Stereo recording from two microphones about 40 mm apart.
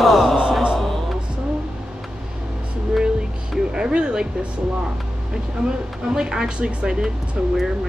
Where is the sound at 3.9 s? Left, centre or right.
Right.